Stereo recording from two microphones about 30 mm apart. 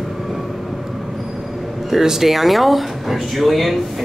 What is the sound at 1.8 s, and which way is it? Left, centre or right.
Speech, centre.